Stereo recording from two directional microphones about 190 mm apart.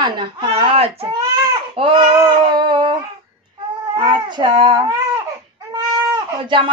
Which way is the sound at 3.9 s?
25° right (ahead or behind).